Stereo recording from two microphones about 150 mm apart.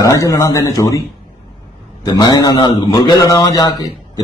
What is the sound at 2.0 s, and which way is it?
A man's voice, 30° left (ahead or behind).